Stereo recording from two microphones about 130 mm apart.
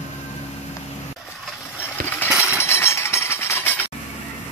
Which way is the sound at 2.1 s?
15° left (ahead or behind).